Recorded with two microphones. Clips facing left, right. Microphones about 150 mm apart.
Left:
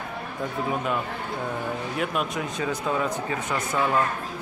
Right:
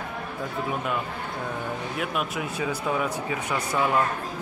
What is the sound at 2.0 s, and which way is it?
Speech, 5° right (ahead or behind).